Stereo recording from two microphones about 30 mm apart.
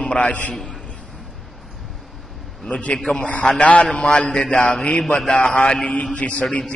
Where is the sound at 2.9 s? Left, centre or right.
Left.